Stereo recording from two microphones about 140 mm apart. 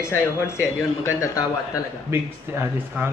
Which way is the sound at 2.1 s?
15° right (ahead or behind).